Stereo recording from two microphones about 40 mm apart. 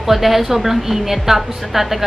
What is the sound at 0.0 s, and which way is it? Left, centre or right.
A woman's voice, centre.